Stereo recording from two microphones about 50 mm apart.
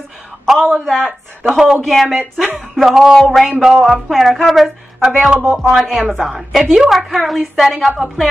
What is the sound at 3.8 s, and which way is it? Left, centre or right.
Speech, centre.